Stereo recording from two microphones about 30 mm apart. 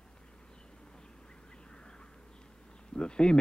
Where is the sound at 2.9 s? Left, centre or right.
Left.